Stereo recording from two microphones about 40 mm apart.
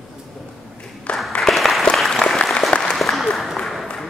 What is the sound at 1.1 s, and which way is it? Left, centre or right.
Applause, left.